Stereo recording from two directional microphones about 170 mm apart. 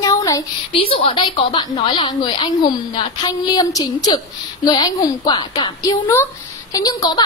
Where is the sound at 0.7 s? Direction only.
30° left (ahead or behind).